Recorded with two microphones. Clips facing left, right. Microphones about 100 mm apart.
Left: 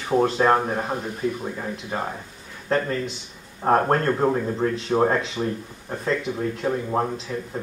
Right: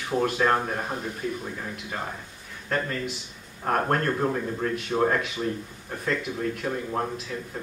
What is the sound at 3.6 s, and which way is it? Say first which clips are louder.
Speech: left 5 dB; 25° left (ahead or behind).